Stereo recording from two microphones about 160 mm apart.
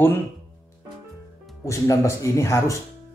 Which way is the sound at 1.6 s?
20° left (ahead or behind).